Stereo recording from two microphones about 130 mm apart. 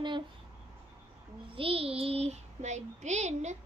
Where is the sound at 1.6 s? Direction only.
45° right (ahead or behind).